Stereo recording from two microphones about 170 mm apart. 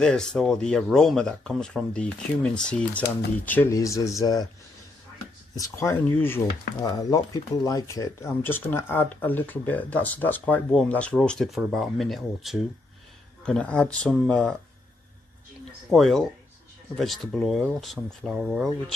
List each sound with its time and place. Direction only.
0.0 s speech: 5° left (ahead or behind); by 4.5 s 20° left (ahead or behind)
5.6 s speech: 15° left (ahead or behind)
15.9 s speech: centre (ahead or behind)